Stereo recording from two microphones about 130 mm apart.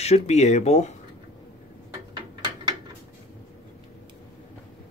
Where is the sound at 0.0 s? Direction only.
55° left (ahead or behind).